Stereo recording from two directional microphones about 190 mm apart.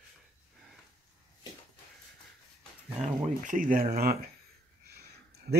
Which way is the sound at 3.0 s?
40° right (ahead or behind).